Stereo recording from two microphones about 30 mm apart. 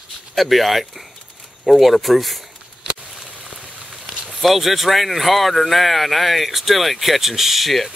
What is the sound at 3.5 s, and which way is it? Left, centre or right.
Rain on surface, centre.